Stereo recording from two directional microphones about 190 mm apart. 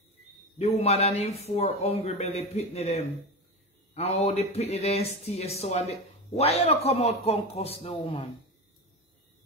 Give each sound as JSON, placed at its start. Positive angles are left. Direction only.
{"t": 0.6, "sound": "speech", "side_deg": 35}